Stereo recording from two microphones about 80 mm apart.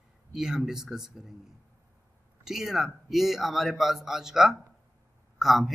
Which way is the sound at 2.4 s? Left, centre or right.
Centre.